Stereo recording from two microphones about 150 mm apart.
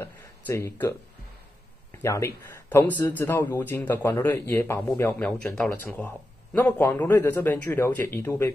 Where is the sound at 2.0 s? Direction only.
20° left (ahead or behind).